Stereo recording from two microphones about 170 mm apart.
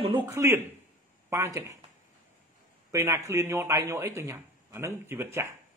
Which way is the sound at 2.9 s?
15° right (ahead or behind).